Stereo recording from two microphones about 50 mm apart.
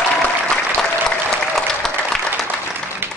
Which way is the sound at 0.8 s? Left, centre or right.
Centre.